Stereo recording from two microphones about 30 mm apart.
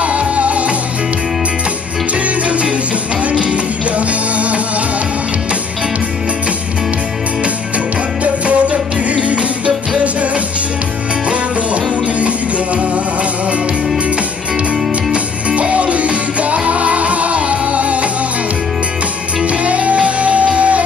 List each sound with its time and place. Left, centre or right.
0.0 s music: right
2.2 s music: right
8.2 s music: right
11.2 s music: right
15.7 s music: right
19.4 s music: right